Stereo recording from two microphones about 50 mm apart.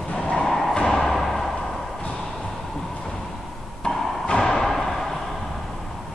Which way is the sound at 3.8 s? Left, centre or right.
Centre.